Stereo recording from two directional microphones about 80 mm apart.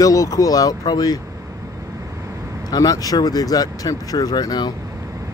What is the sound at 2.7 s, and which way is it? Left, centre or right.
Speech, left.